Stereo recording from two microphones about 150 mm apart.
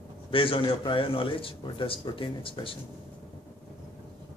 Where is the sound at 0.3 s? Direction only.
35° left (ahead or behind).